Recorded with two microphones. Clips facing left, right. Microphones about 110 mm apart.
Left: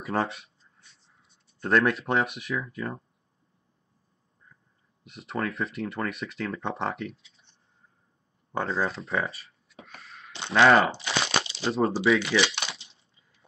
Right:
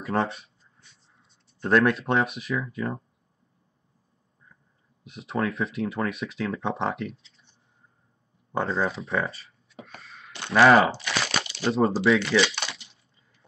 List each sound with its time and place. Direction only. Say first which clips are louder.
0.0 s a sound: right 2 dB; centre (ahead or behind)
1.6 s speech: right 2 dB; centre (ahead or behind)
5.0 s speech: right 3 dB; centre (ahead or behind)
8.5 s speech: right 2 dB; centre (ahead or behind)
10.3 s a sound: right 2 dB; 25° left (ahead or behind)
10.6 s speech: right 2 dB; 5° right (ahead or behind)
11.0 s crunch: left 1 dB; 25° left (ahead or behind)
11.6 s speech: right 3 dB; centre (ahead or behind)
12.6 s a sound: right 1 dB; 30° left (ahead or behind)